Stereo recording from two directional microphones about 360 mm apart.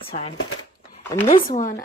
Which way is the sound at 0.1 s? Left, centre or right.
Left.